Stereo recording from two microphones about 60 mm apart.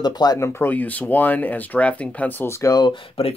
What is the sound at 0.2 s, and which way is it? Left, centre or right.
Speech, left.